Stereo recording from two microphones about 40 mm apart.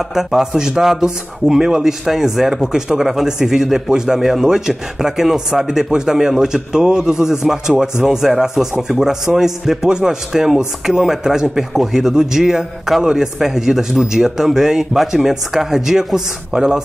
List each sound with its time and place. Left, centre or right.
0.1 s a man's voice: centre
9.8 s a man's voice: right